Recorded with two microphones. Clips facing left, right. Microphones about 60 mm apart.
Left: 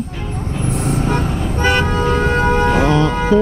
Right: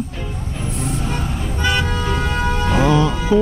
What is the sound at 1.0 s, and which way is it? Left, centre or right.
Vehicle, left.